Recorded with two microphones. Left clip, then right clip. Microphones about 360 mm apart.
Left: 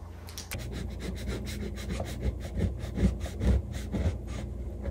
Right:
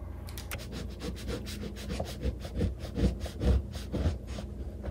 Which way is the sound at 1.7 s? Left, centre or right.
Centre.